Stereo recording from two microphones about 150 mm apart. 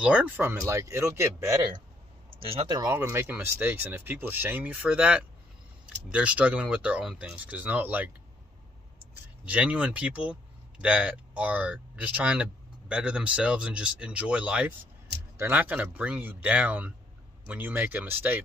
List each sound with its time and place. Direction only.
0.0 s speech: 10° right (ahead or behind); by 2.9 s 30° right (ahead or behind)
2.9 s speech: 15° right (ahead or behind)
9.4 s speech: 10° right (ahead or behind)